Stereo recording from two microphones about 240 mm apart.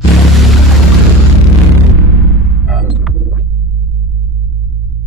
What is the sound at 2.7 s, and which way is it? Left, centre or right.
Music, centre.